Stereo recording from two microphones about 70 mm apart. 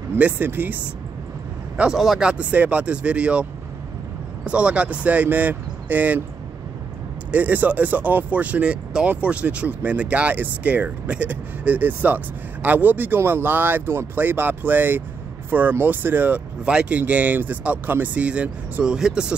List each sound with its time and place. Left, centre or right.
0.2 s speech: right
2.0 s speech: centre
4.5 s speech: centre
7.2 s speech: right
16.6 s speech: centre
17.0 s speech: right